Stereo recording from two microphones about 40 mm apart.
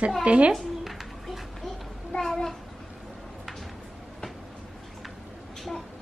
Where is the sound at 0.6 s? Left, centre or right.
Centre.